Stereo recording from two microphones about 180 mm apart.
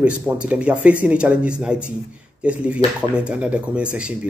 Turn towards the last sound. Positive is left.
turn(degrees=-5)  # may be behind; listen again after turning